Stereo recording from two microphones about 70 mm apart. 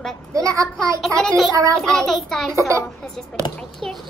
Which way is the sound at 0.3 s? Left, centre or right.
Right.